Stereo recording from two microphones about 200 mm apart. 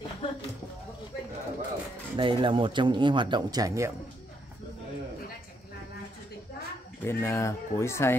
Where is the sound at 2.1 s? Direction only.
25° right (ahead or behind).